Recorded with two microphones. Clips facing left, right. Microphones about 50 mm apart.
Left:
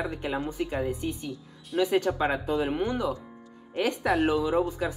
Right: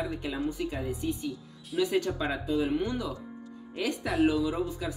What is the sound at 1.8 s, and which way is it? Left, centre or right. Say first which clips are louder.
Speech: left 3 dB; left.